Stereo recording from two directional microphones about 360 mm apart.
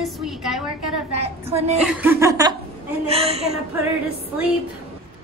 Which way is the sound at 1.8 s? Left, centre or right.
Centre.